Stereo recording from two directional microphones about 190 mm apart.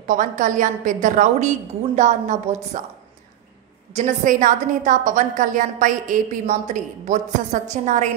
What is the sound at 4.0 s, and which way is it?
A woman's voice, 40° right (ahead or behind).